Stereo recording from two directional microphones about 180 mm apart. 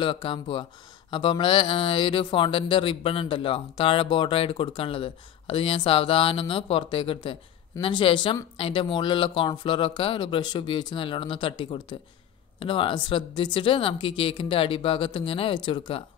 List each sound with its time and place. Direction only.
0.0 s speech: 30° left (ahead or behind)